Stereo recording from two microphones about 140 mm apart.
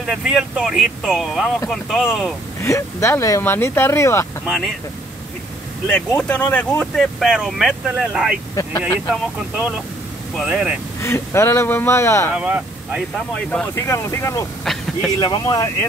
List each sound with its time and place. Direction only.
0.0 s speech: 5° right (ahead or behind)
2.6 s speech: 20° left (ahead or behind)
5.9 s speech: 5° left (ahead or behind)
8.6 s vehicle: 25° left (ahead or behind)
9.1 s speech: 5° right (ahead or behind)
11.0 s speech: 20° left (ahead or behind)
12.4 s speech: 10° right (ahead or behind)
13.3 s speech: 10° left (ahead or behind)
13.8 s speech: 20° left (ahead or behind)
14.6 s speech: 5° left (ahead or behind)
15.1 s speech: 30° left (ahead or behind)